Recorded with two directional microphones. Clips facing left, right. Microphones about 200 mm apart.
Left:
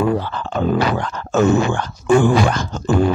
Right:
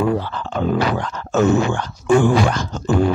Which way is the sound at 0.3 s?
50° left (ahead or behind).